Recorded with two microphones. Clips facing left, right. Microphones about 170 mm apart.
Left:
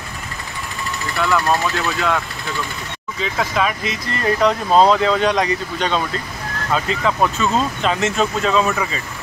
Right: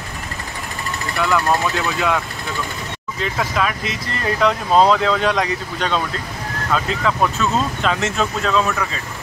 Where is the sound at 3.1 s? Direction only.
Centre (ahead or behind).